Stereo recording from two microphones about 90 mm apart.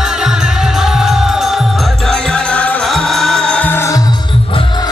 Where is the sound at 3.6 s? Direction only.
25° left (ahead or behind).